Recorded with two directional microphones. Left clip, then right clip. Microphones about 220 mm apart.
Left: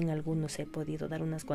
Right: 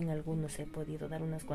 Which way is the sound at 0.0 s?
40° left (ahead or behind).